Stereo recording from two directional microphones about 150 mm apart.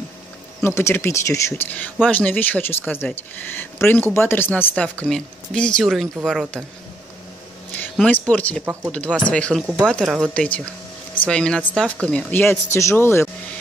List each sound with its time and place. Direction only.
0.6 s speech: 15° left (ahead or behind); by 6.6 s 5° right (ahead or behind)
8.1 s speech: 10° left (ahead or behind)
10.0 s speech: 5° right (ahead or behind)
10.3 s speech: 10° left (ahead or behind)